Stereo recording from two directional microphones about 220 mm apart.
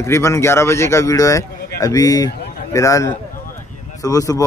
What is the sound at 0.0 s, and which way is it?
A man's voice, 10° left (ahead or behind).